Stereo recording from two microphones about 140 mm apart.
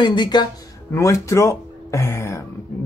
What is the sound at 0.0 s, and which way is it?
Speech, 30° left (ahead or behind).